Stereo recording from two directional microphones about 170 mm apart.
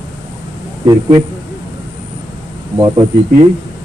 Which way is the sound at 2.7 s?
25° right (ahead or behind).